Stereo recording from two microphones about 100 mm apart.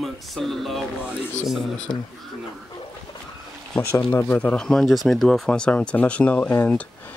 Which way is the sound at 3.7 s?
10° left (ahead or behind).